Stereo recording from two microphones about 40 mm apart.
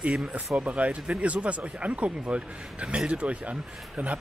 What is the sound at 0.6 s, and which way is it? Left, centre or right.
Speech, right.